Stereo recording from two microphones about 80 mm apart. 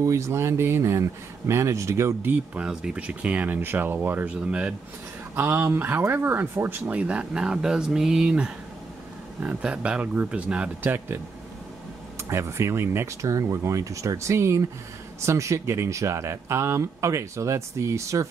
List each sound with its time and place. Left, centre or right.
0.0 s speech: right
2.2 s speech: right
2.6 s speech: centre
5.3 s speech: right
6.9 s speech: centre
12.3 s speech: right